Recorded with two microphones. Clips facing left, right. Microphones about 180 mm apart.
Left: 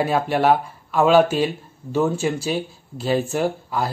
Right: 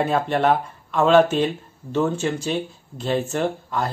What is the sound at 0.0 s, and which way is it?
Speech, 5° left (ahead or behind).